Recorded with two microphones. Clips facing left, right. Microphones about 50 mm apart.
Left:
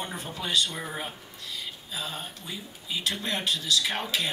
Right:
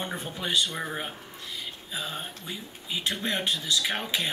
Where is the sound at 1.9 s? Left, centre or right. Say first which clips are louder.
Right 1 dB; right.